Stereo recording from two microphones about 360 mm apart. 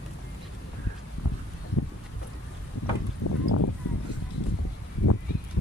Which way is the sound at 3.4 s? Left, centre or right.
Left.